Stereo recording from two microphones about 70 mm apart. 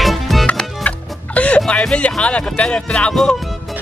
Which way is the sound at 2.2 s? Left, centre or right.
Centre.